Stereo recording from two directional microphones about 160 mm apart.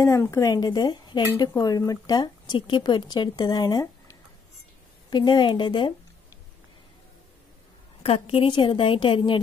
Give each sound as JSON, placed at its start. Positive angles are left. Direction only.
{"t": 0.0, "sound": "speech", "side_deg": 20}
{"t": 8.0, "sound": "a woman's voice", "side_deg": 35}